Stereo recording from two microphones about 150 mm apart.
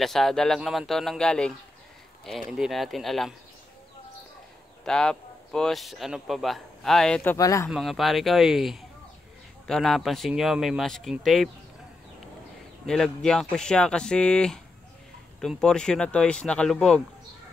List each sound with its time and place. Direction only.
0.0 s speech: 5° left (ahead or behind)
2.5 s speech: centre (ahead or behind)
4.8 s speech: 5° left (ahead or behind)
7.2 s speech: 20° left (ahead or behind)
7.7 s speech: centre (ahead or behind)
12.8 s speech: 5° left (ahead or behind)